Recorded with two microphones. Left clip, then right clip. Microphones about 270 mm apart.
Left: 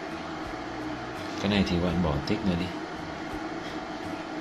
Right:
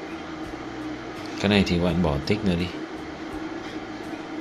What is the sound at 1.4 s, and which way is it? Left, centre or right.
Speech, right.